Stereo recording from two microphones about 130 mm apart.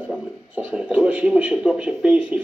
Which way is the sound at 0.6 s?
10° right (ahead or behind).